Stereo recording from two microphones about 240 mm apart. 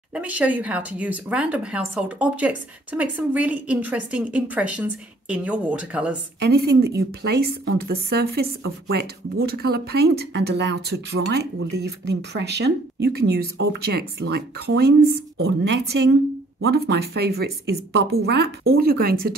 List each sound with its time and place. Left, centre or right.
0.1 s speech: centre
6.4 s speech: right
15.3 s speech: right